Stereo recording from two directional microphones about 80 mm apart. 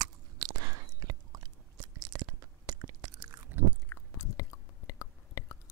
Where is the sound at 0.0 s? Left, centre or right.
Right.